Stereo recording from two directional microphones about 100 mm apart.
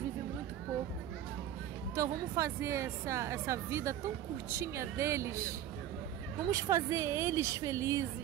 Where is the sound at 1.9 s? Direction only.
30° right (ahead or behind).